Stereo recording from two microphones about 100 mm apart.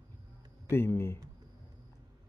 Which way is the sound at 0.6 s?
25° left (ahead or behind).